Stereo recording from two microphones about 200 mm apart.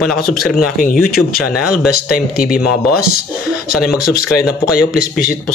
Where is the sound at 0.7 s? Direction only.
45° left (ahead or behind).